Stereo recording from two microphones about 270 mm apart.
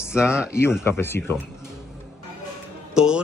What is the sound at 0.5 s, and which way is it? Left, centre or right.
Speech, centre.